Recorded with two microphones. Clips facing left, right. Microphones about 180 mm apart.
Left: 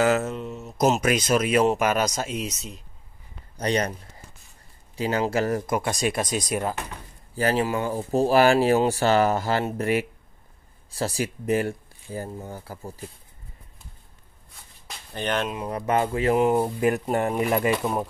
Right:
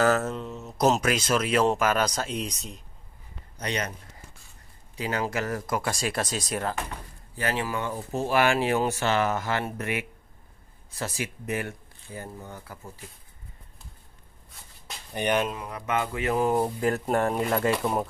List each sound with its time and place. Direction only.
0.0 s speech: 10° left (ahead or behind)
1.0 s speech: 15° left (ahead or behind)
3.5 s speech: 35° left (ahead or behind)
4.9 s speech: 30° left (ahead or behind); by 6.8 s 10° left (ahead or behind)
7.3 s speech: 35° left (ahead or behind)
15.1 s speech: 15° right (ahead or behind)
15.6 s speech: 35° left (ahead or behind)
16.8 s speech: 20° left (ahead or behind)
17.7 s speech: centre (ahead or behind)